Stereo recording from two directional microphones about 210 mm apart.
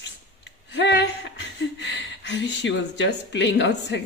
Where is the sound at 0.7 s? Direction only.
55° left (ahead or behind).